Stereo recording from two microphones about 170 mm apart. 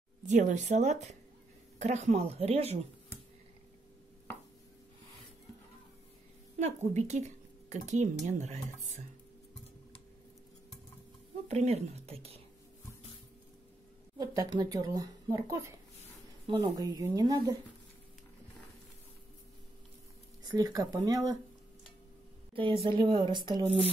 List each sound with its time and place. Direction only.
0.3 s speech: 45° right (ahead or behind)
6.9 s a woman's voice: 40° right (ahead or behind)
11.4 s speech: 40° right (ahead or behind)
14.1 s speech: 20° right (ahead or behind)
20.4 s speech: 20° right (ahead or behind)
22.5 s speech: 30° right (ahead or behind)